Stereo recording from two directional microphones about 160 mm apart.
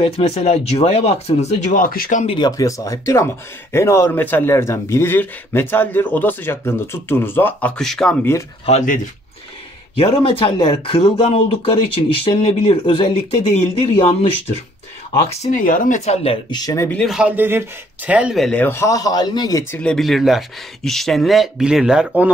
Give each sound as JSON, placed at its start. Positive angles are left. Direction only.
{"t": 0.0, "sound": "speech", "side_deg": 40}
{"t": 2.2, "sound": "a man's voice", "side_deg": 30}
{"t": 8.2, "sound": "a man's voice", "side_deg": 15}
{"t": 8.6, "sound": "speech", "side_deg": 50}
{"t": 9.9, "sound": "speech", "side_deg": 35}
{"t": 15.5, "sound": "speech", "side_deg": 60}
{"t": 16.4, "sound": "speech", "side_deg": 25}
{"t": 17.0, "sound": "speech", "side_deg": -5}
{"t": 18.6, "sound": "speech", "side_deg": 15}
{"t": 19.7, "sound": "speech", "side_deg": 5}